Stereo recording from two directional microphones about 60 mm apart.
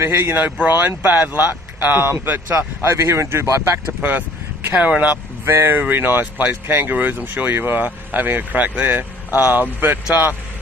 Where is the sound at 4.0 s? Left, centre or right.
Right.